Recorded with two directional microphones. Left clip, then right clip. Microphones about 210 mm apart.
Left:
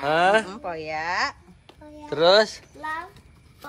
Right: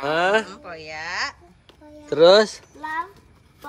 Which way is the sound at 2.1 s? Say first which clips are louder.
Right 4 dB; 20° right (ahead or behind).